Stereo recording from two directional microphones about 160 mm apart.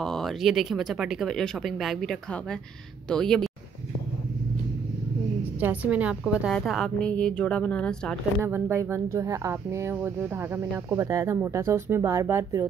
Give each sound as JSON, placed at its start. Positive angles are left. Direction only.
{"t": 0.0, "sound": "speech", "side_deg": 0}
{"t": 5.6, "sound": "speech", "side_deg": -10}
{"t": 8.4, "sound": "speech", "side_deg": -15}